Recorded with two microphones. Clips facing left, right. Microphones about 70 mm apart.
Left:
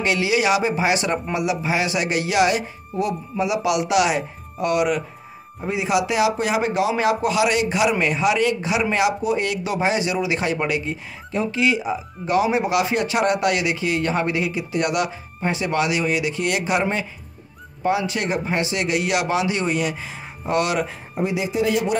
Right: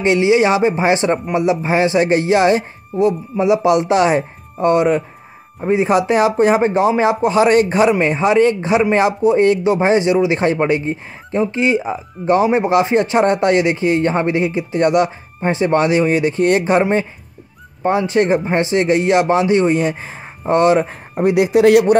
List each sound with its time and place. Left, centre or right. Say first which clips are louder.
0.0 s speech: right 7 dB; right
17.8 s speech: right 7 dB; right
21.1 s speech: right 12 dB; right